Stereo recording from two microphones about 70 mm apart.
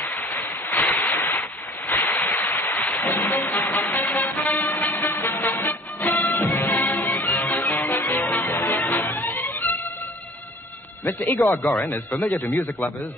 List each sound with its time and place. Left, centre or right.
0.0 s a sound: left
4.2 s music: left
11.1 s speech: left